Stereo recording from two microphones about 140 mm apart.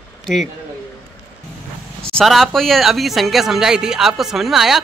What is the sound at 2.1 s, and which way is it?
Speech, centre (ahead or behind).